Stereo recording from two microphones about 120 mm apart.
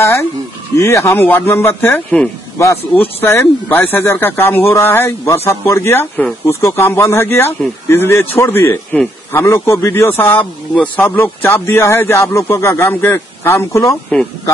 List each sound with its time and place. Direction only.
0.0 s speech: 25° left (ahead or behind)